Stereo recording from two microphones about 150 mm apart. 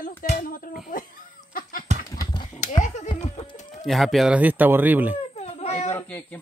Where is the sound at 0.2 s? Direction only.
70° left (ahead or behind).